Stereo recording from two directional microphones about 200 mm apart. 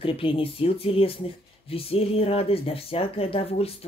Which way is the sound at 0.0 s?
25° left (ahead or behind).